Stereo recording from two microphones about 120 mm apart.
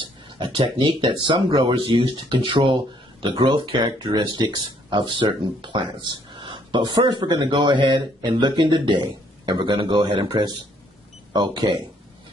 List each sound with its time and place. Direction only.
0.0 s a sound: 40° right (ahead or behind)
0.7 s speech: 45° right (ahead or behind)
11.3 s speech: 35° right (ahead or behind)